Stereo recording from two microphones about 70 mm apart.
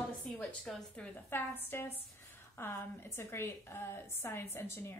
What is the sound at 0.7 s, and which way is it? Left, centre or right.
Speech, centre.